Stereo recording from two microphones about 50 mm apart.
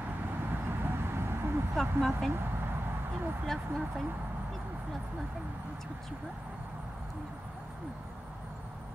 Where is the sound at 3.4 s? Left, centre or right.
Centre.